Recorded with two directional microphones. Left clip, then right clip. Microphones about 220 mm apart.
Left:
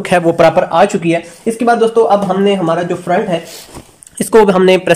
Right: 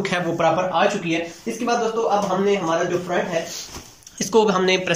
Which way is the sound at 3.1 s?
45° left (ahead or behind).